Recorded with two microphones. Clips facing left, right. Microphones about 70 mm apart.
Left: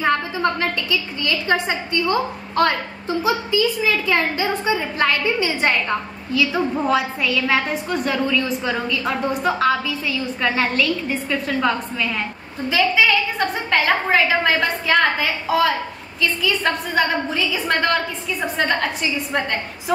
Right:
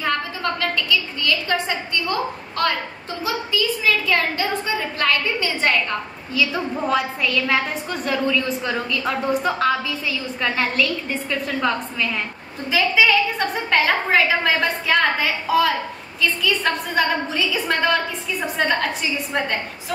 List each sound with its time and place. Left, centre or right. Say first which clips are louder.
0.0 s a woman's voice: left 4 dB; left
6.3 s a woman's voice: left 3 dB; centre